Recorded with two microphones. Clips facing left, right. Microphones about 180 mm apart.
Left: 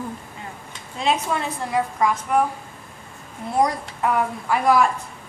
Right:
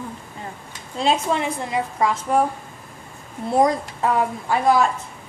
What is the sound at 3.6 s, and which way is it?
Speech, 25° right (ahead or behind).